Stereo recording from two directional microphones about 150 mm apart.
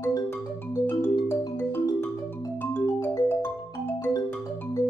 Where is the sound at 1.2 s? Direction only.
15° left (ahead or behind).